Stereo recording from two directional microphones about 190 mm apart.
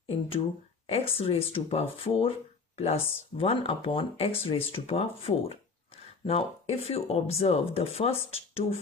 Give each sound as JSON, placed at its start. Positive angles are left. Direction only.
{"t": 0.8, "sound": "speech", "side_deg": 30}